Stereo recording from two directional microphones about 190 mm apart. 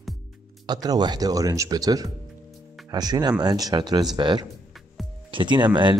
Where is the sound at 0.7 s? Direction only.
20° right (ahead or behind).